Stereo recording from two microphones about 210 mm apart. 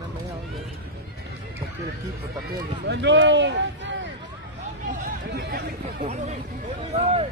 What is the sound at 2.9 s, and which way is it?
Speech, 55° right (ahead or behind).